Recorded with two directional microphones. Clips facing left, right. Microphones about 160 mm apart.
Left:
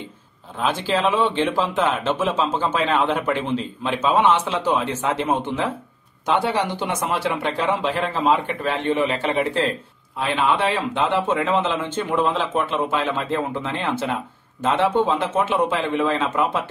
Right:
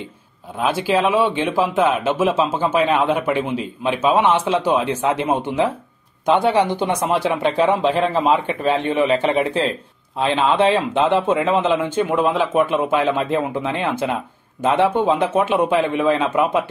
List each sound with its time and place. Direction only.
0.6 s a man's voice: 10° right (ahead or behind)
6.8 s a man's voice: 15° right (ahead or behind)